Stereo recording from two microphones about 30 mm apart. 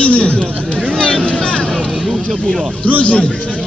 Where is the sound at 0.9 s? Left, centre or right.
Left.